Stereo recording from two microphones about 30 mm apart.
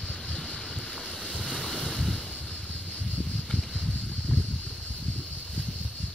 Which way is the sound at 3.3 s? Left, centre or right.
Centre.